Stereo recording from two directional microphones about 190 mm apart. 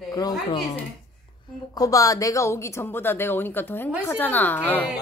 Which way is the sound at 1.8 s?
20° left (ahead or behind).